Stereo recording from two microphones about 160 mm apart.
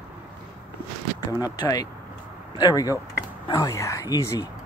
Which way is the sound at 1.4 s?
20° left (ahead or behind).